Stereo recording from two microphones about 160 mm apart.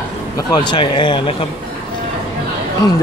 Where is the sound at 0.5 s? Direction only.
30° left (ahead or behind).